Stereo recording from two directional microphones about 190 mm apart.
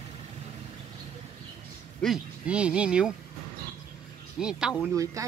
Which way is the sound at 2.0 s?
5° right (ahead or behind).